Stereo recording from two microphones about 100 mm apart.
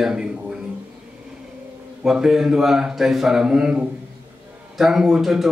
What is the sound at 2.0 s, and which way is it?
Speech, 5° right (ahead or behind).